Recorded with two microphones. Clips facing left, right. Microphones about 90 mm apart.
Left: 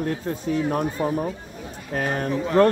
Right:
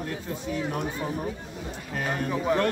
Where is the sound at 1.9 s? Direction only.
50° left (ahead or behind).